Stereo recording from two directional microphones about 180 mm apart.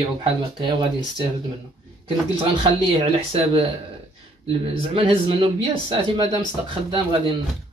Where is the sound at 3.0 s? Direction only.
30° right (ahead or behind).